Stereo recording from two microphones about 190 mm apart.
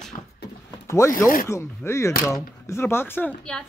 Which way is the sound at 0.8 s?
15° left (ahead or behind).